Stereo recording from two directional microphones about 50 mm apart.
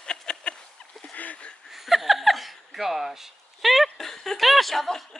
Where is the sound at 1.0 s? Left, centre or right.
Left.